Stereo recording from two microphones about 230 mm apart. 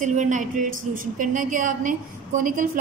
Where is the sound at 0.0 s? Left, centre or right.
Right.